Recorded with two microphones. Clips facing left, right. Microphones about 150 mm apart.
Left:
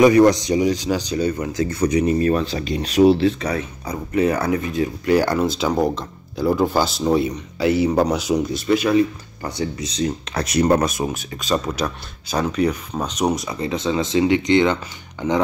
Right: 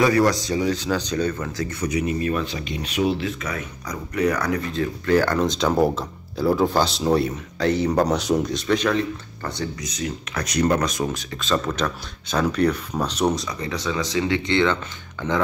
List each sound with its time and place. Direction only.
0.0 s speech: 20° left (ahead or behind)
1.6 s speech: 35° left (ahead or behind); by 9.5 s 10° left (ahead or behind)
9.6 s speech: 30° left (ahead or behind); by 13.3 s 10° left (ahead or behind)
13.3 s speech: 20° left (ahead or behind)